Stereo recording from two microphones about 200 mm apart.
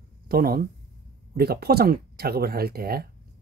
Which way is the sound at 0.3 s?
45° right (ahead or behind).